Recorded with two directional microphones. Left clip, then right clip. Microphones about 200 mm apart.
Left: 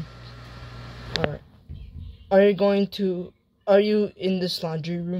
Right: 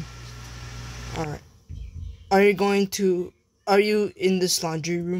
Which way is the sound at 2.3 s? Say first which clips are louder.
Left 1 dB; 35° right (ahead or behind).